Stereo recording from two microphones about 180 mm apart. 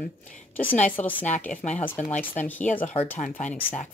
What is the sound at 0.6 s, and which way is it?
Speech, 10° left (ahead or behind).